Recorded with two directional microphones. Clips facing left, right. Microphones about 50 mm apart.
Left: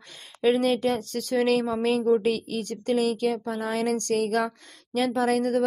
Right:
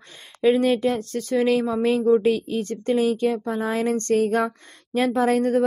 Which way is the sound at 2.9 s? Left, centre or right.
Right.